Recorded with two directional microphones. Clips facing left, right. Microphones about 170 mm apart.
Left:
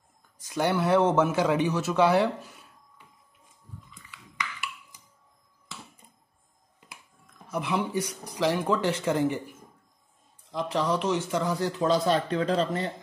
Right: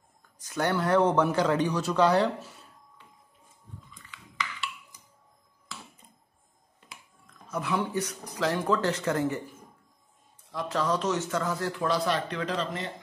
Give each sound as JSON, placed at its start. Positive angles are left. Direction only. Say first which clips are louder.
{"t": 0.5, "sound": "speech", "louder": "left 2 dB", "side_deg": 10}
{"t": 7.4, "sound": "speech", "louder": "left 1 dB", "side_deg": 10}
{"t": 10.5, "sound": "speech", "louder": "left 1 dB", "side_deg": 15}